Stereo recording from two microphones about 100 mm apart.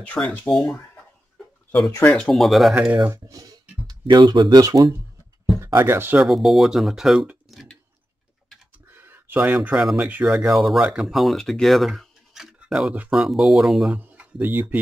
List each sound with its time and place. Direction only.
0.2 s speech: 10° left (ahead or behind)
1.9 s speech: 30° left (ahead or behind)
2.1 s speech: 5° left (ahead or behind)
2.9 s speech: 15° right (ahead or behind)
3.3 s speech: 35° right (ahead or behind)
5.8 s speech: 25° right (ahead or behind)
6.2 s speech: centre (ahead or behind)
8.9 s speech: 20° right (ahead or behind)
10.5 s speech: centre (ahead or behind)
13.9 s speech: 15° right (ahead or behind)